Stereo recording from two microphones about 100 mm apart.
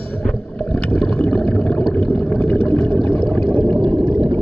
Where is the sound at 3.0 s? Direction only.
20° left (ahead or behind).